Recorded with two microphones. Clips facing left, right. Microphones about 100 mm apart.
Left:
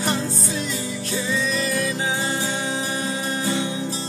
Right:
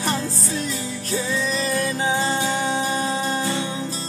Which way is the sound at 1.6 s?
30° right (ahead or behind).